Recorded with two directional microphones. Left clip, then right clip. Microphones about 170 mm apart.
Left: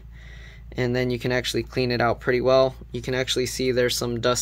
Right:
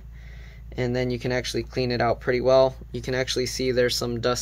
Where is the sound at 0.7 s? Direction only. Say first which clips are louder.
Left 2 dB; 20° left (ahead or behind).